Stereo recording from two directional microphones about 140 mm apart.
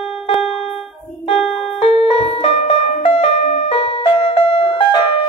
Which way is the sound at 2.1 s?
45° left (ahead or behind).